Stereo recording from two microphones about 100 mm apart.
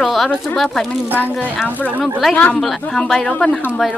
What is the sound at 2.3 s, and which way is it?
A child's voice, 10° left (ahead or behind).